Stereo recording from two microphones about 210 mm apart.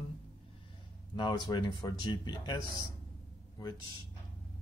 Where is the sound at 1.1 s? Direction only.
20° left (ahead or behind).